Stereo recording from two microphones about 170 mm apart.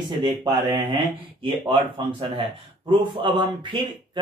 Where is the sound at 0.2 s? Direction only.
25° right (ahead or behind).